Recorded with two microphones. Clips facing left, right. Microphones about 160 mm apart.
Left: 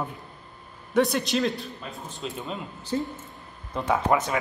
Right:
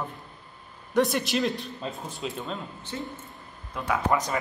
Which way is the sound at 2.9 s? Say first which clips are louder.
Left 8 dB; 30° left (ahead or behind).